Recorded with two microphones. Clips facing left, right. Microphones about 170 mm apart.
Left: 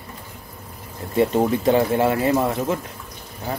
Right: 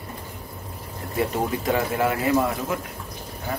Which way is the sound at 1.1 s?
30° left (ahead or behind).